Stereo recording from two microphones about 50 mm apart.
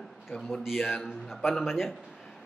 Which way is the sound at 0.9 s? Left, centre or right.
Centre.